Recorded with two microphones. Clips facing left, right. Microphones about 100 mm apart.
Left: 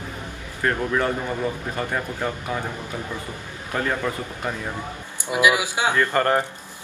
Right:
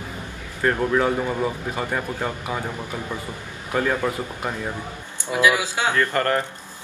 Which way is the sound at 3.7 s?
10° right (ahead or behind).